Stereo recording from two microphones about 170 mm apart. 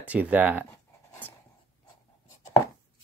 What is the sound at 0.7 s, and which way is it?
Writing, 10° left (ahead or behind).